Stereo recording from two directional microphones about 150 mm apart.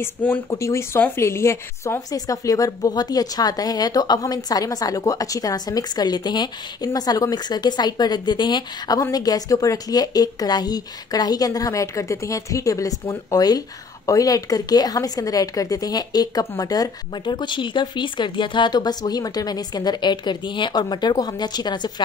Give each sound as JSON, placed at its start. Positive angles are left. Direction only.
{"t": 0.0, "sound": "speech", "side_deg": 15}